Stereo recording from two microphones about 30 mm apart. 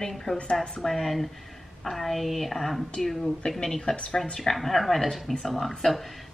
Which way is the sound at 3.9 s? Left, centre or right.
Left.